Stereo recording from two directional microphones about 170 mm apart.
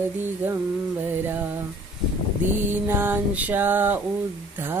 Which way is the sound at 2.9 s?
10° right (ahead or behind).